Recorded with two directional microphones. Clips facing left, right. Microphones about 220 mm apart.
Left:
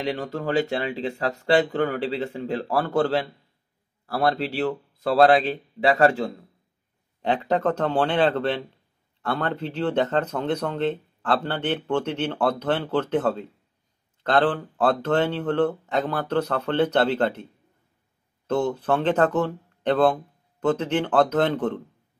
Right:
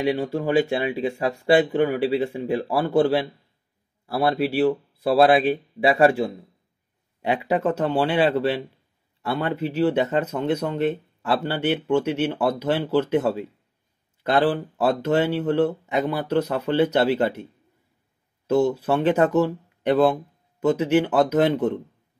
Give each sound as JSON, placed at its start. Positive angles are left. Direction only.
{"t": 0.0, "sound": "speech", "side_deg": -10}
{"t": 18.5, "sound": "speech", "side_deg": -10}